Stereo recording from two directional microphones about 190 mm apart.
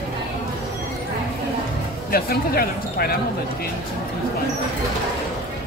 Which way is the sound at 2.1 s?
50° left (ahead or behind).